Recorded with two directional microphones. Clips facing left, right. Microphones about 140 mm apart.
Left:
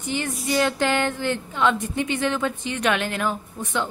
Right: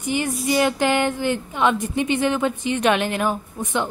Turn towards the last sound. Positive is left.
turn(degrees=-15)  # may be behind; listen again after turning